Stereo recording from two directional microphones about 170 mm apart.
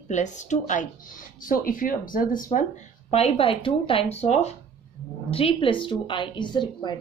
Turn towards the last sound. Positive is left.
turn(degrees=25)  # may be behind; listen again after turning